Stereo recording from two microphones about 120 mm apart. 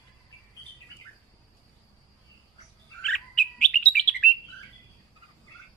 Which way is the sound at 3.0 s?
5° left (ahead or behind).